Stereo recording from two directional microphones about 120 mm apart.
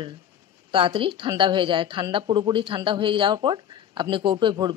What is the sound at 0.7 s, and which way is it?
Speech, 45° right (ahead or behind).